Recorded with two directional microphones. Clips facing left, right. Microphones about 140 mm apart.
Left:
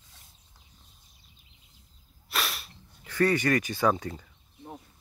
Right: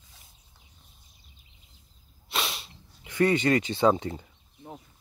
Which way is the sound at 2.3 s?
25° right (ahead or behind).